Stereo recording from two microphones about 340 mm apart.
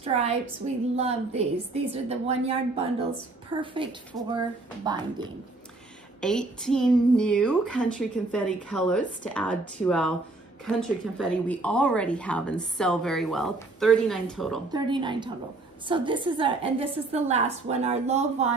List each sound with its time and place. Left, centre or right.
0.0 s a woman's voice: centre
6.2 s speech: centre
14.7 s a woman's voice: centre